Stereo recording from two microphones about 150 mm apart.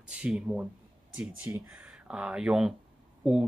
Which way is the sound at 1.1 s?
15° right (ahead or behind).